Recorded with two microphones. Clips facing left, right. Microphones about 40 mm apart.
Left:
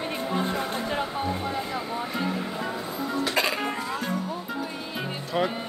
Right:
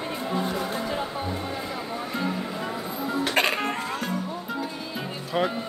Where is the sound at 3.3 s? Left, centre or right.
Right.